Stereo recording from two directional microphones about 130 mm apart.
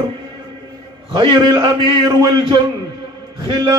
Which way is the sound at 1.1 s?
35° right (ahead or behind).